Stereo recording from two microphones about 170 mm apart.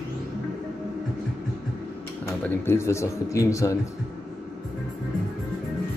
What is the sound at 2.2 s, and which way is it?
Speech, 15° left (ahead or behind).